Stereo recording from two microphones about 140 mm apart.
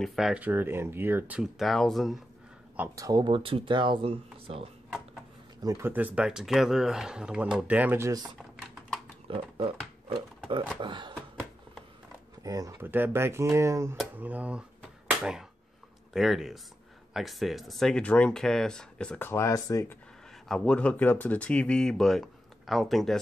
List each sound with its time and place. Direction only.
0.0 s speech: centre (ahead or behind)
3.0 s speech: 25° right (ahead or behind)
5.6 s speech: 25° right (ahead or behind)
9.3 s speech: 40° right (ahead or behind)
10.8 s speech: 35° right (ahead or behind)
12.4 s speech: 25° right (ahead or behind)
15.0 s a sound: 5° right (ahead or behind)
16.1 s speech: 5° right (ahead or behind); by 20.0 s 20° left (ahead or behind)
20.4 s speech: 5° left (ahead or behind)